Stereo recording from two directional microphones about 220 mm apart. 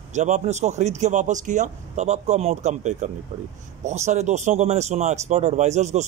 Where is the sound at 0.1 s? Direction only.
30° right (ahead or behind).